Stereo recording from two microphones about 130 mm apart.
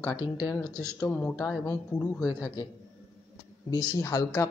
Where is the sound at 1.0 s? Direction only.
10° left (ahead or behind).